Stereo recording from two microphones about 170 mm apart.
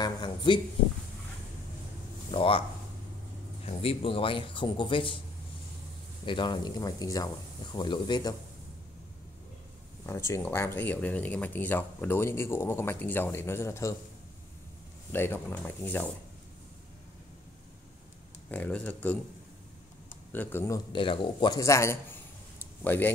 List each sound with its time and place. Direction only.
0.0 s speech: 25° left (ahead or behind)
2.3 s speech: 30° left (ahead or behind)
3.6 s speech: 35° left (ahead or behind)
6.2 s a man's voice: 30° left (ahead or behind)
10.0 s speech: 15° left (ahead or behind)
15.1 s speech: 15° left (ahead or behind)
18.5 s speech: 10° left (ahead or behind)
20.3 s speech: 10° left (ahead or behind)
20.9 s a man's voice: 30° left (ahead or behind); by 23.1 s 10° left (ahead or behind)